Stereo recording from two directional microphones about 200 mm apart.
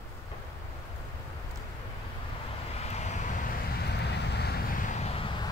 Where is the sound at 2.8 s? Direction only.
35° left (ahead or behind).